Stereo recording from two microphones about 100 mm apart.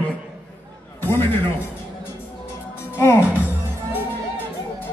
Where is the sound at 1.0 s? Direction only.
25° left (ahead or behind).